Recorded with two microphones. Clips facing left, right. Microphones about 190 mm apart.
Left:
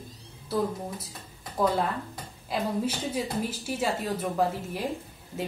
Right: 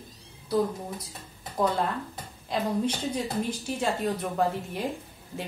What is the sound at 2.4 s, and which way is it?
Speech, 5° left (ahead or behind).